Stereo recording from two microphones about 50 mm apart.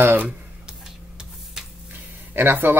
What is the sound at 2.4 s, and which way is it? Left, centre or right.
Speech, right.